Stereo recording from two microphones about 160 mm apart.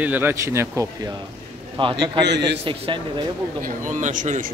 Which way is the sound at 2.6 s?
35° right (ahead or behind).